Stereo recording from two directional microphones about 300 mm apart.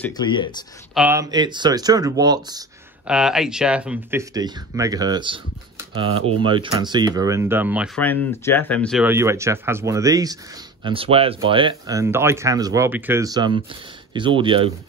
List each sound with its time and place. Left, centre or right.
0.0 s speech: centre
0.9 s speech: centre
3.1 s speech: centre